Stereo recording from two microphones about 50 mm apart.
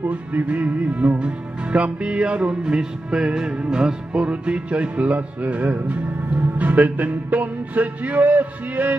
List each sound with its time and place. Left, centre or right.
0.1 s music: right